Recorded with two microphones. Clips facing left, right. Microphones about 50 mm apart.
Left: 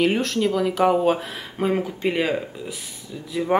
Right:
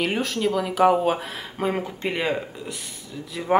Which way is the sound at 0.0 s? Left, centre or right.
Centre.